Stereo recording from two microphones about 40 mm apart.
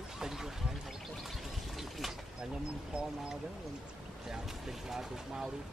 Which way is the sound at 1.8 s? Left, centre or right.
Centre.